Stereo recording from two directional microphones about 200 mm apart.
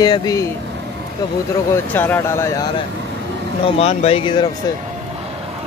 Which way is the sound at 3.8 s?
30° left (ahead or behind).